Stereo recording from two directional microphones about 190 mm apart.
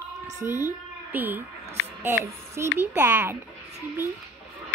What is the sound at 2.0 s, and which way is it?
Child singing, 10° right (ahead or behind).